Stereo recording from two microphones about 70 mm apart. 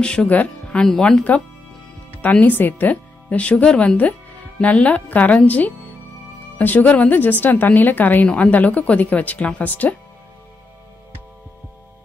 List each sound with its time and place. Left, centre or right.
0.0 s speech: centre
2.4 s a woman's voice: left